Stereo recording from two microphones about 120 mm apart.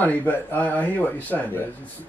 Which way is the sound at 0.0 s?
15° left (ahead or behind).